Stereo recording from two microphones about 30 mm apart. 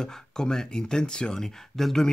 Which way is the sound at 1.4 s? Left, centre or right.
Centre.